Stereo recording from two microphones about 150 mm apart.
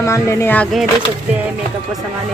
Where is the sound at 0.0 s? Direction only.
20° left (ahead or behind).